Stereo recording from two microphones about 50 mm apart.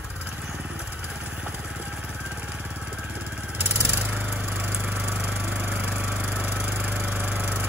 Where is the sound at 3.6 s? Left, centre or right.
Right.